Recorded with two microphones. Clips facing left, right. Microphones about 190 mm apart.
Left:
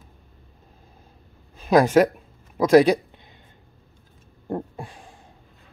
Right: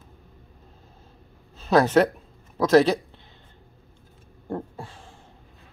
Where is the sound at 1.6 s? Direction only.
10° left (ahead or behind).